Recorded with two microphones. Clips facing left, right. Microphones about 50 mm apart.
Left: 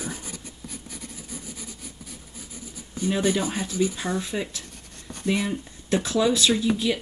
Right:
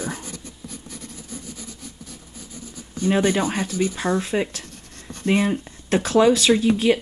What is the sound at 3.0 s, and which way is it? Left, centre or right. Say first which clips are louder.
Speech: right 4 dB; right.